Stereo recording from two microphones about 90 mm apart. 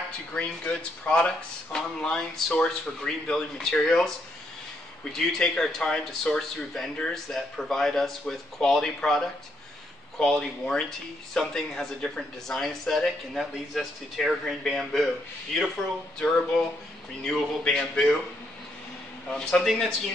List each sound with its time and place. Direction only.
0.3 s speech: 15° left (ahead or behind)
5.1 s speech: 5° left (ahead or behind)
17.2 s speech: 10° left (ahead or behind)
19.2 s speech: 10° left (ahead or behind)